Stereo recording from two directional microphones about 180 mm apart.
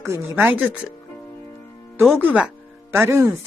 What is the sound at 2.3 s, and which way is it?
Speech, 5° right (ahead or behind).